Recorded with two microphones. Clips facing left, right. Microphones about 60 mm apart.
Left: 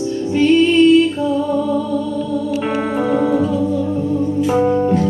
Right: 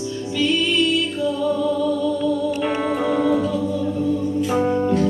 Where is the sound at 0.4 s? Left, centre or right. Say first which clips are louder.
Left 8 dB; left.